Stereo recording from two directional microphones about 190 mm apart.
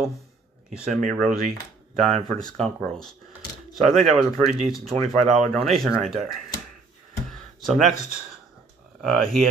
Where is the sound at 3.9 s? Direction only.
40° right (ahead or behind).